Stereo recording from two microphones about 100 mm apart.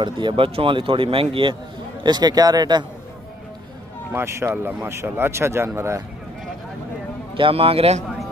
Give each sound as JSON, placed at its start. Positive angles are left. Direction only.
{"t": 0.0, "sound": "speech", "side_deg": -55}
{"t": 2.0, "sound": "speech", "side_deg": -45}
{"t": 4.1, "sound": "speech", "side_deg": -25}
{"t": 7.3, "sound": "a man's voice", "side_deg": -65}